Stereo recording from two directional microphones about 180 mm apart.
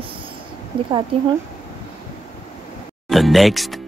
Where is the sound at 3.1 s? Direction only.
Centre (ahead or behind).